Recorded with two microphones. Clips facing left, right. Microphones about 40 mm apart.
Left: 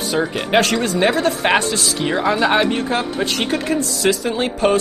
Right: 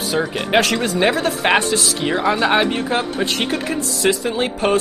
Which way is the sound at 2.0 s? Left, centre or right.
Centre.